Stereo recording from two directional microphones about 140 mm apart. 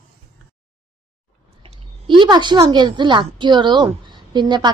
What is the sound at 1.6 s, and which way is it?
A woman's voice, 40° right (ahead or behind).